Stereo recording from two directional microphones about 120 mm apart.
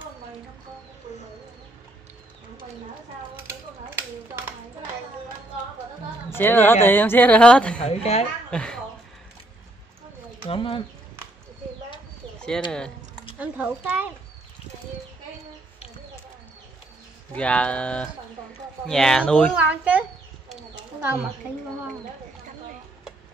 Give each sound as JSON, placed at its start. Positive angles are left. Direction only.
{"t": 3.4, "sound": "a sound", "side_deg": -20}
{"t": 6.3, "sound": "speech", "side_deg": 15}
{"t": 7.8, "sound": "a woman's voice", "side_deg": 60}
{"t": 8.5, "sound": "speech", "side_deg": 5}
{"t": 10.4, "sound": "speech", "side_deg": 45}
{"t": 12.4, "sound": "bird", "side_deg": 5}
{"t": 13.4, "sound": "a child's voice", "side_deg": -15}
{"t": 17.3, "sound": "speech", "side_deg": 10}
{"t": 19.5, "sound": "a child's voice", "side_deg": -10}